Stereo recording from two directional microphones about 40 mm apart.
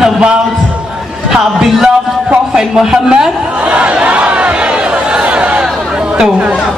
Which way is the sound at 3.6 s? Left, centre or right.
Right.